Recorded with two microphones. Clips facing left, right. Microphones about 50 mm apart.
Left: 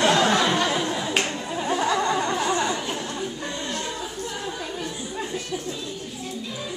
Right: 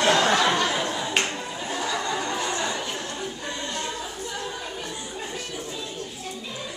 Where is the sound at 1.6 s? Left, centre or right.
Centre.